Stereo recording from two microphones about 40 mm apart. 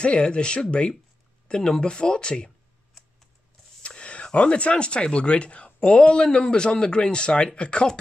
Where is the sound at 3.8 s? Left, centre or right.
Left.